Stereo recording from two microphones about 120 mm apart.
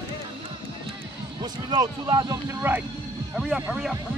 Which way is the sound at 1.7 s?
40° right (ahead or behind).